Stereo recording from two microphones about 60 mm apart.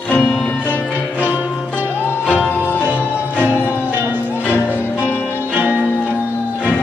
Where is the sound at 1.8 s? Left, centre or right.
Left.